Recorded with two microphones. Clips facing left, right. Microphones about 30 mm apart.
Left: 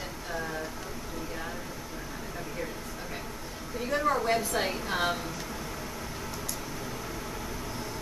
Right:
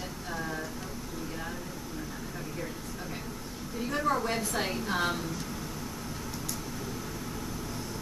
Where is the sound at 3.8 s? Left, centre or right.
Centre.